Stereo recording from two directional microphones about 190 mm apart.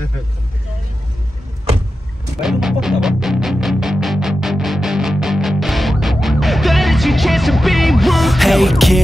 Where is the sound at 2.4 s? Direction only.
Centre (ahead or behind).